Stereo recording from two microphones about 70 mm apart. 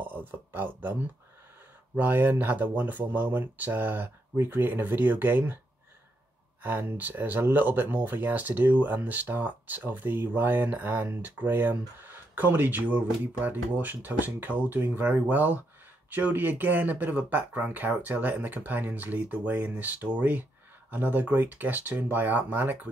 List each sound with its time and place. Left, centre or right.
0.0 s speech: right
6.6 s speech: right